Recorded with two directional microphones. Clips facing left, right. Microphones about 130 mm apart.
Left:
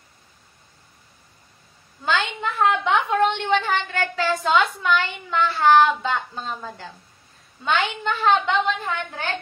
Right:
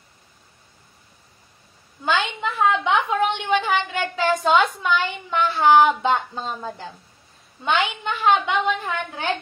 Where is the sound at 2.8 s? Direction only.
10° right (ahead or behind).